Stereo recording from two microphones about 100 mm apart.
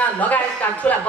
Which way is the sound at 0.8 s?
15° left (ahead or behind).